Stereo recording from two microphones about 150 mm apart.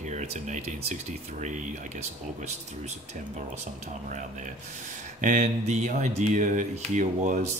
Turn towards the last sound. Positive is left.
turn(degrees=-55)  # may be behind; listen again after turning